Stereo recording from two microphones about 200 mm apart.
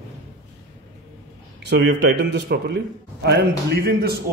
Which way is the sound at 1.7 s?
60° right (ahead or behind).